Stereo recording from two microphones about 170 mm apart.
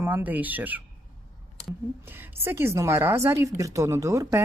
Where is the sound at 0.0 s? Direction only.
10° right (ahead or behind).